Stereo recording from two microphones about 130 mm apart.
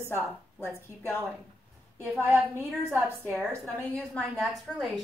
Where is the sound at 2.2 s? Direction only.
15° right (ahead or behind).